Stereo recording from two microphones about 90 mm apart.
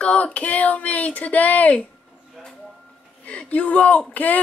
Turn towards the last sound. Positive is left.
turn(degrees=15)  # may be behind; listen again after turning